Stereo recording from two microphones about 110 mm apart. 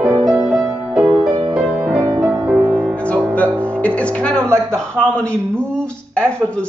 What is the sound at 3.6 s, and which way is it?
Speech, 10° left (ahead or behind).